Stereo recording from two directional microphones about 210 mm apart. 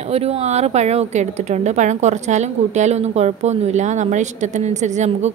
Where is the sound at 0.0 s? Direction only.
30° right (ahead or behind).